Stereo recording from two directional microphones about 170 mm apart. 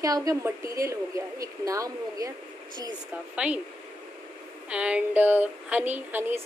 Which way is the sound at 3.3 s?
5° right (ahead or behind).